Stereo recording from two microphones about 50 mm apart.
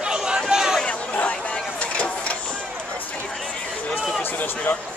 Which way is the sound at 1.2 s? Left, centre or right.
Left.